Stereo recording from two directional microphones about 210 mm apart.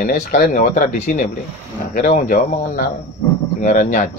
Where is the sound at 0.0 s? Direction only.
40° left (ahead or behind).